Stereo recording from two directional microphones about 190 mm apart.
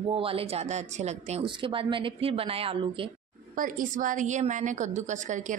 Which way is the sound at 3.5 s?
45° right (ahead or behind).